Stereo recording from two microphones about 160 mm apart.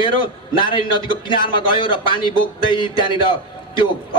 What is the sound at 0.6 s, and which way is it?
A man's voice, 30° left (ahead or behind).